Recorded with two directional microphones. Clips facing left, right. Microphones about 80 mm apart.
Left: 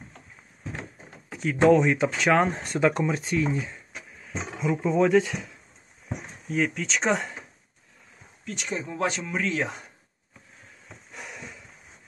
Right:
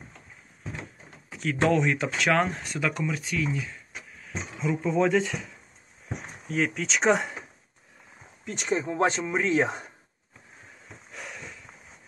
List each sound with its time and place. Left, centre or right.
1.4 s speech: centre
2.6 s speech: left
4.6 s speech: centre
6.5 s speech: centre
8.5 s speech: right
11.1 s a sound: centre